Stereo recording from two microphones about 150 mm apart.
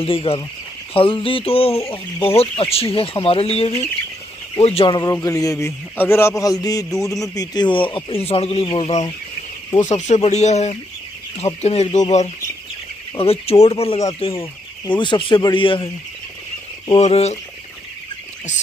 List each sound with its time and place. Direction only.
0.0 s speech: 40° left (ahead or behind)
1.8 s a man's voice: 20° left (ahead or behind)
2.2 s a man's voice: 40° left (ahead or behind)
9.8 s speech: 55° left (ahead or behind)
13.1 s speech: 40° left (ahead or behind)